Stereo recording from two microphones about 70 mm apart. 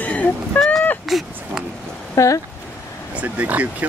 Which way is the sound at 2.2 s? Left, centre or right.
Left.